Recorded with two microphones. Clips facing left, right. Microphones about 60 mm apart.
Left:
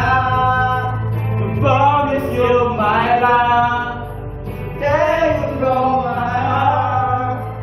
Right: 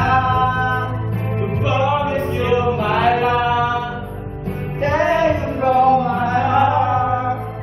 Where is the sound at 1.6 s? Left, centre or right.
Left.